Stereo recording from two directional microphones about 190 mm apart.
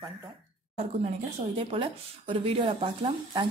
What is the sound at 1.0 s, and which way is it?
Speech, 30° right (ahead or behind).